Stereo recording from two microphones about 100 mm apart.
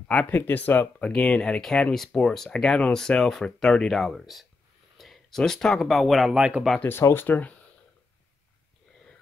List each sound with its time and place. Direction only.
0.1 s speech: 15° left (ahead or behind); by 6.6 s 10° right (ahead or behind)
6.8 s speech: 25° left (ahead or behind)